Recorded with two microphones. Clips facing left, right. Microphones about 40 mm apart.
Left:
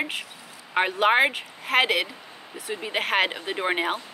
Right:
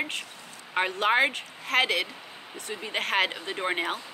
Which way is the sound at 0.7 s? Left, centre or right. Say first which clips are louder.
Left 4 dB; centre.